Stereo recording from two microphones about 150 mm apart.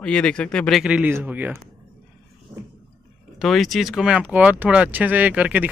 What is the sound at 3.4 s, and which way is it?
Speech, centre (ahead or behind).